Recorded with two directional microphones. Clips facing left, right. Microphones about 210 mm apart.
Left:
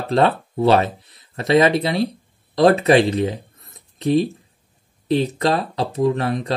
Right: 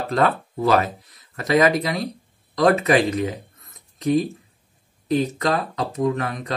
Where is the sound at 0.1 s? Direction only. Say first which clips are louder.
Left 4 dB; 30° left (ahead or behind).